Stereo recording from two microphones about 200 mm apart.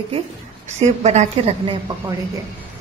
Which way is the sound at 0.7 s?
35° right (ahead or behind).